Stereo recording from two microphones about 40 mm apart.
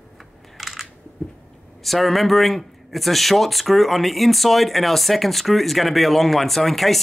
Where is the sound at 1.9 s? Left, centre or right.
Centre.